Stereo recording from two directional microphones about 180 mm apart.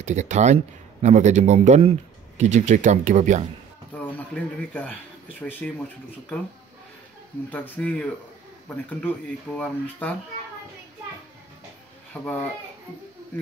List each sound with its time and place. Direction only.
0.0 s speech: 40° right (ahead or behind)
3.9 s speech: 10° left (ahead or behind)
7.5 s speech: 10° left (ahead or behind)
12.1 s a child's voice: 10° left (ahead or behind)